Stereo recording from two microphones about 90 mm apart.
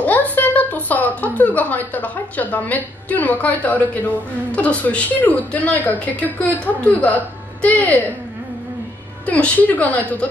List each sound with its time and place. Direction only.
0.0 s speech: 15° left (ahead or behind)
9.2 s a woman's voice: 15° left (ahead or behind)